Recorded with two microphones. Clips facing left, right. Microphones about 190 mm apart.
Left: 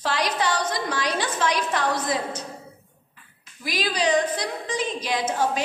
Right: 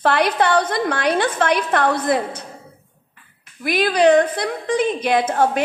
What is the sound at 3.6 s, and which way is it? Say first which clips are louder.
A woman's voice: right 9 dB; 55° right (ahead or behind).